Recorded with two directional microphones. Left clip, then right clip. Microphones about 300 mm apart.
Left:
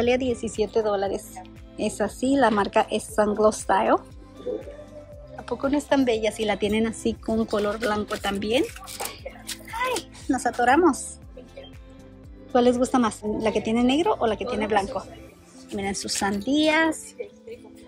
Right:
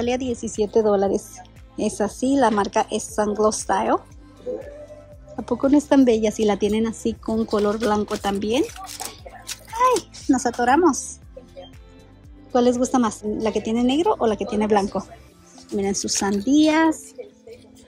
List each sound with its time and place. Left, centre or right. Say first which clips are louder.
0.0 s speech: left 1 dB; centre
5.4 s speech: right 6 dB; centre
9.8 s speech: right 9 dB; centre
10.9 s speech: right 2 dB; centre
12.5 s speech: right 1 dB; centre